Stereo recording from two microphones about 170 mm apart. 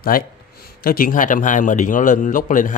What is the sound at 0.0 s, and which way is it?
Speech, 60° left (ahead or behind).